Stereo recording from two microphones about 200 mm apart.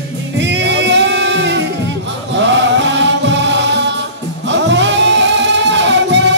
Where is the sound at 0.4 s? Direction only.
60° right (ahead or behind).